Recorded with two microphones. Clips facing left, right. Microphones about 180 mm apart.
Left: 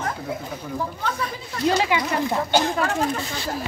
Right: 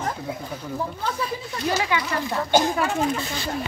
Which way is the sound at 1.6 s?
20° left (ahead or behind).